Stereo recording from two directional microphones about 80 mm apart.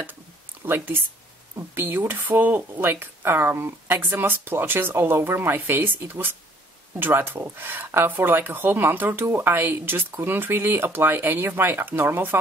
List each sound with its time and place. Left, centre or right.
0.7 s speech: right